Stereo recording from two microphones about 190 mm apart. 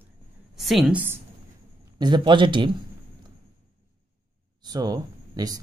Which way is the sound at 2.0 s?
25° right (ahead or behind).